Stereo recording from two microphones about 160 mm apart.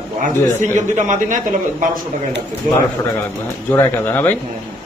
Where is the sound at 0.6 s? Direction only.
50° right (ahead or behind).